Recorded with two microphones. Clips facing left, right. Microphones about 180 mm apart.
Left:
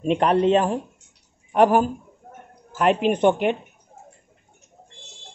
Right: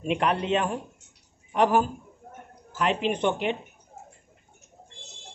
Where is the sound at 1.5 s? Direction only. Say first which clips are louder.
Left 5 dB; 50° left (ahead or behind).